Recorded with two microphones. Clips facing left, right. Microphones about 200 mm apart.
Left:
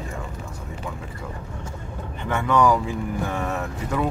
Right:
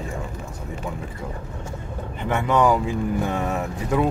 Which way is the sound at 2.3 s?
20° right (ahead or behind).